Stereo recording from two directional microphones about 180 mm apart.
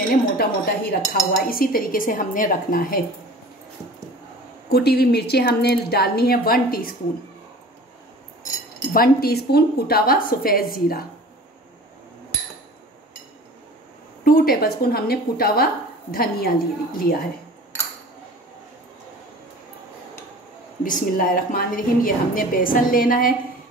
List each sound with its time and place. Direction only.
0.1 s speech: 55° left (ahead or behind)
4.6 s speech: 60° left (ahead or behind)
8.9 s speech: 55° left (ahead or behind)
14.2 s speech: 55° left (ahead or behind)
20.8 s speech: 50° left (ahead or behind)